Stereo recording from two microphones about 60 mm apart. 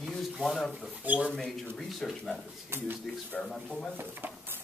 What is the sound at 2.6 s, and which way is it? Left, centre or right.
Speech, right.